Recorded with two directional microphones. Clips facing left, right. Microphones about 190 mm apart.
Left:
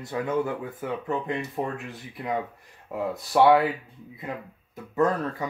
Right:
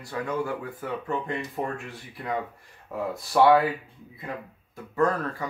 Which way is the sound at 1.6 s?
15° left (ahead or behind).